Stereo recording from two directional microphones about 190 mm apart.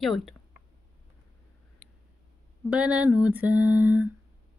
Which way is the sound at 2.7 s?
5° right (ahead or behind).